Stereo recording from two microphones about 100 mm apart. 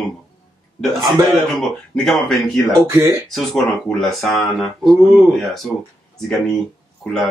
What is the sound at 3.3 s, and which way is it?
Speech, 5° left (ahead or behind).